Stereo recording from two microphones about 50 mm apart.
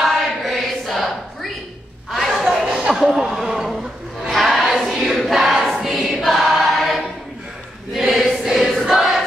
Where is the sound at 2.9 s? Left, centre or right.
Centre.